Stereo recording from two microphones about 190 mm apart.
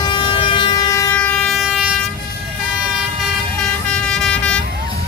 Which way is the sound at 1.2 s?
Centre (ahead or behind).